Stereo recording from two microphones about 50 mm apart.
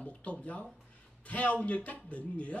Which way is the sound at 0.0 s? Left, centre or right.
Left.